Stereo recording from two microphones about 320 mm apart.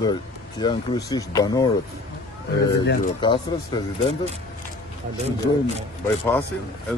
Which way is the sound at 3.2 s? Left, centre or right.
Centre.